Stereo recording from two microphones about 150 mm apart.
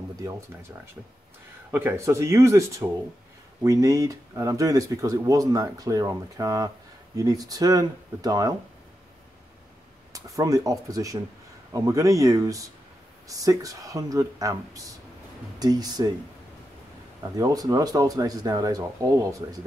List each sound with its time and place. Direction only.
0.1 s speech: 25° right (ahead or behind)
1.7 s speech: 15° right (ahead or behind)
10.1 s speech: 25° right (ahead or behind)
17.2 s speech: 20° right (ahead or behind)